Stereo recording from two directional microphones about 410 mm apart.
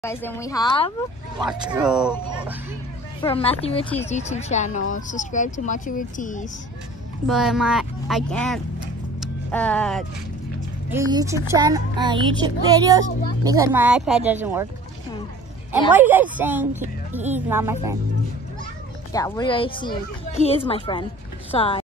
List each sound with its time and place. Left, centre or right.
0.0 s speech: centre
1.4 s speech: centre
3.2 s speech: centre
7.2 s speech: centre
15.9 s speech: centre
19.1 s speech: centre